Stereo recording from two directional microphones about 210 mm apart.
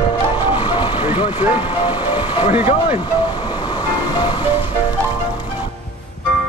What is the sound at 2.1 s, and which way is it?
Vehicle, 25° left (ahead or behind).